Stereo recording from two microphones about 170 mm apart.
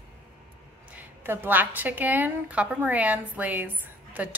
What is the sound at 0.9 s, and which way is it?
A woman's voice, 10° right (ahead or behind).